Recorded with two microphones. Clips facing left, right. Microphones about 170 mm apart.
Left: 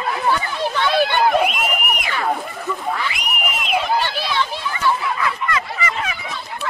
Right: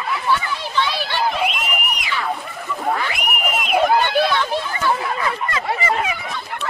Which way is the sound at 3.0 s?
55° right (ahead or behind).